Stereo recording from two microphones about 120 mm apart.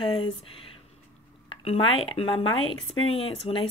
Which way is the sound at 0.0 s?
50° left (ahead or behind).